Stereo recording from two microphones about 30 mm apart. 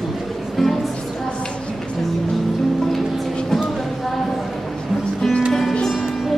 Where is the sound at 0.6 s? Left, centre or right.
Centre.